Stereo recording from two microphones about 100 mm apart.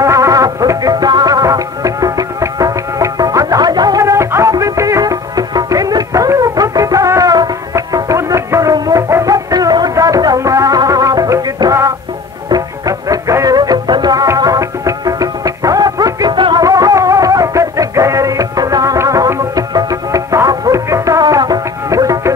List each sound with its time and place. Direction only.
0.0 s music: 30° right (ahead or behind)
14.2 s music: 35° right (ahead or behind); by 16.6 s 50° right (ahead or behind)
16.6 s music: 35° right (ahead or behind)